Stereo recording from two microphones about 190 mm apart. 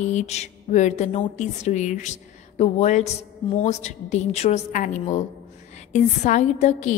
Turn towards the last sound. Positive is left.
turn(degrees=40)  # may be behind; listen again after turning